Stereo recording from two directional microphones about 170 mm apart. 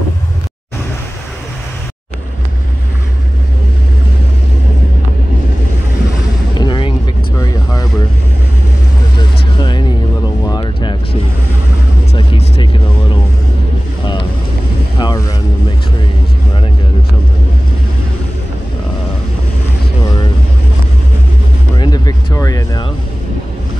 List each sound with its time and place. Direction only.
6.5 s vehicle: 25° left (ahead or behind)
9.6 s music: 25° left (ahead or behind)
10.4 s a sound: 25° left (ahead or behind)
12.1 s music: 35° left (ahead or behind)
15.0 s vehicle: 25° left (ahead or behind)
21.7 s music: 25° left (ahead or behind)